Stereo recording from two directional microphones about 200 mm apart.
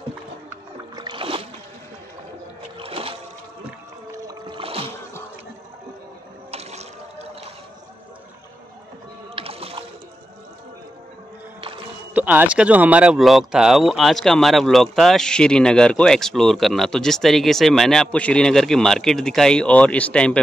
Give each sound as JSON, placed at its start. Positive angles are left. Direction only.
{"t": 0.5, "sound": "splash", "side_deg": -20}
{"t": 2.8, "sound": "music", "side_deg": -30}
{"t": 4.1, "sound": "boat", "side_deg": -20}
{"t": 6.5, "sound": "boat", "side_deg": -30}
{"t": 9.3, "sound": "boat", "side_deg": -30}
{"t": 12.1, "sound": "speech", "side_deg": -10}